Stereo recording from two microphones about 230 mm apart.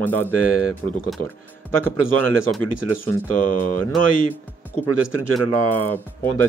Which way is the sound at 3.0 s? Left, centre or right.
Centre.